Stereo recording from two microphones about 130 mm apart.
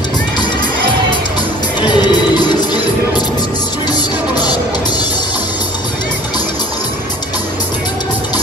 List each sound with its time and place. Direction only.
1.8 s music: 35° left (ahead or behind)